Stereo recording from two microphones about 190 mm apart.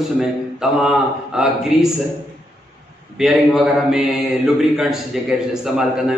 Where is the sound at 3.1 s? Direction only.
Centre (ahead or behind).